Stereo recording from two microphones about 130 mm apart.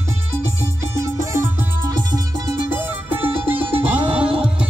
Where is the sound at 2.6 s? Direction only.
15° right (ahead or behind).